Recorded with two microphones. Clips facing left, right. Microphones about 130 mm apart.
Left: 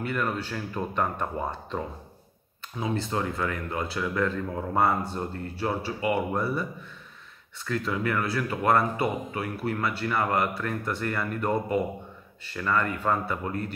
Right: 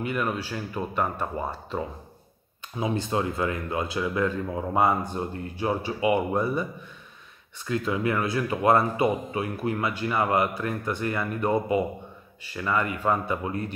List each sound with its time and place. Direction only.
0.0 s speech: 15° right (ahead or behind)
2.8 s speech: 20° right (ahead or behind)
7.6 s speech: 20° right (ahead or behind)